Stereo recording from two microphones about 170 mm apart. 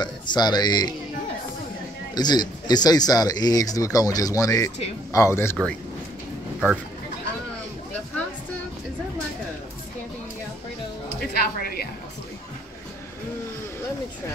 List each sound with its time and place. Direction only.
0.0 s speech: 25° left (ahead or behind)
2.1 s a man's voice: 25° left (ahead or behind)
11.3 s a woman's voice: 65° left (ahead or behind)